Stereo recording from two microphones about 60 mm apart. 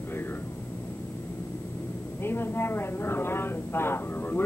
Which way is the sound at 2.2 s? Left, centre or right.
Left.